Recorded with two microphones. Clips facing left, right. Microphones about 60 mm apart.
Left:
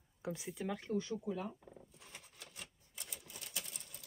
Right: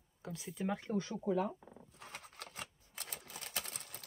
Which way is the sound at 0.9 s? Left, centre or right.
Right.